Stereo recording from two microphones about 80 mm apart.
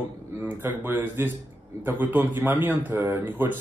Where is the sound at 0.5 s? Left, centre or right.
Right.